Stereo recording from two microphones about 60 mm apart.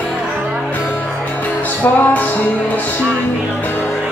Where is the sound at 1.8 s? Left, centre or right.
Left.